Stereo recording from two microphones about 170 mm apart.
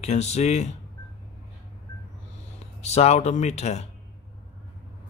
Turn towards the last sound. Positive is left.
turn(degrees=40)  # may be behind; listen again after turning